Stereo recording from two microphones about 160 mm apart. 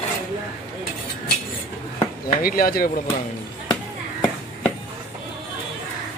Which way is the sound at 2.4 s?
65° left (ahead or behind).